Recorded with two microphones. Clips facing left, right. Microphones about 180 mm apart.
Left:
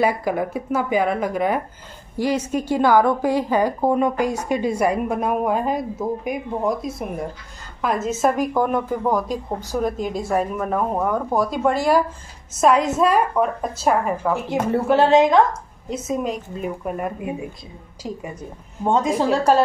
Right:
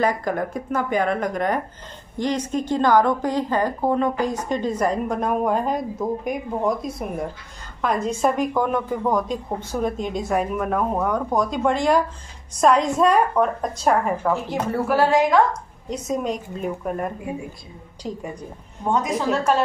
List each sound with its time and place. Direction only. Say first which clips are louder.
0.0 s a woman's voice: left 2 dB; 10° left (ahead or behind)
14.9 s a woman's voice: left 3 dB; 25° left (ahead or behind)
15.9 s a woman's voice: left 1 dB; centre (ahead or behind)
18.9 s a woman's voice: left 3 dB; 25° left (ahead or behind)